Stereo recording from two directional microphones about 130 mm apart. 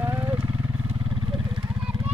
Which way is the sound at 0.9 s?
40° right (ahead or behind).